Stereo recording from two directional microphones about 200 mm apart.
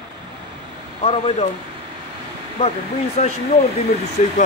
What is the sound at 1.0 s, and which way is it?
Speech, 30° left (ahead or behind).